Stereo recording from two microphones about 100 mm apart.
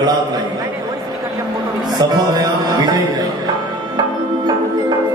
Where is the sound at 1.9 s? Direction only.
45° right (ahead or behind).